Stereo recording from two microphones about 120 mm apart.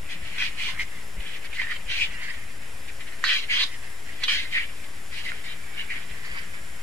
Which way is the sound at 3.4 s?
20° left (ahead or behind).